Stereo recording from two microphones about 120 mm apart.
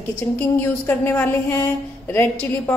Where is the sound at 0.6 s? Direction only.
15° left (ahead or behind).